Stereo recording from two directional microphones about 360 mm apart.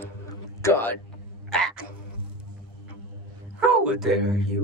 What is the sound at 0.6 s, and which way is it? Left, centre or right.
Speech, centre.